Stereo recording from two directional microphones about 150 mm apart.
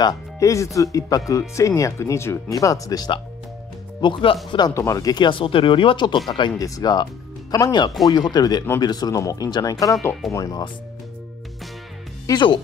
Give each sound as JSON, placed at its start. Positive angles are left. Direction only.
{"t": 0.0, "sound": "speech", "side_deg": 25}
{"t": 12.3, "sound": "speech", "side_deg": 30}